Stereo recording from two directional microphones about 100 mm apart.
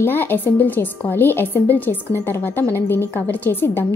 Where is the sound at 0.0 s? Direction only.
20° left (ahead or behind).